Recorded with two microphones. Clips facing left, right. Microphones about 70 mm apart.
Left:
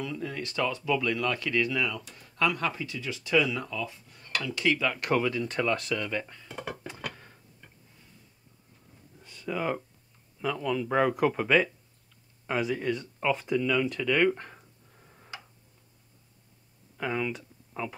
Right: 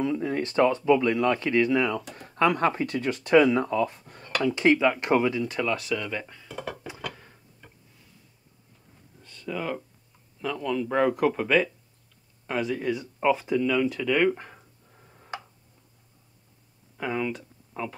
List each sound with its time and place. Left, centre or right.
0.0 s speech: right
2.0 s speech: right
2.3 s speech: right
4.6 s speech: right
5.4 s speech: centre
6.5 s dishes: centre
7.0 s a sound: centre
9.2 s a sound: centre
10.4 s speech: centre
16.9 s speech: centre